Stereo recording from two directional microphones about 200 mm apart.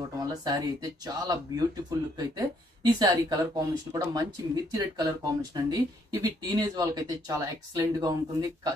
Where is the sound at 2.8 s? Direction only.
20° right (ahead or behind).